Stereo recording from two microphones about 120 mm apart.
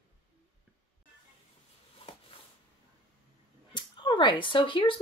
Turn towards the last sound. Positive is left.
turn(degrees=45)  # may be behind; listen again after turning